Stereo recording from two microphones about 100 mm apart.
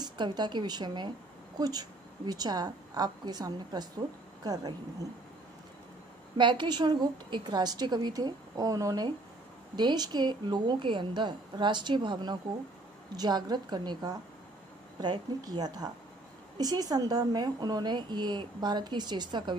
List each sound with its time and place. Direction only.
0.0 s a woman's voice: 45° right (ahead or behind)
6.3 s a woman's voice: 50° right (ahead or behind)